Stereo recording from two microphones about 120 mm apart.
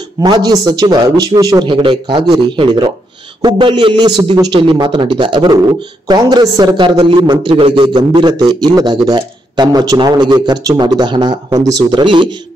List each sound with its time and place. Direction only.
0.2 s a man's voice: 35° right (ahead or behind)
1.7 s a man's voice: 45° right (ahead or behind)